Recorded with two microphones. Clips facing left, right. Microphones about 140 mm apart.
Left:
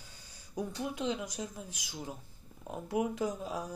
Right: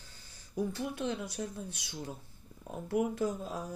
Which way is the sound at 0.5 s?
20° left (ahead or behind).